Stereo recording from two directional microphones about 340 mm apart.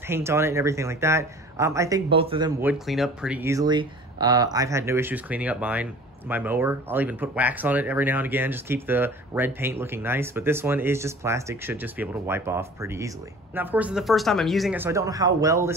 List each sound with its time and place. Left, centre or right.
0.1 s speech: centre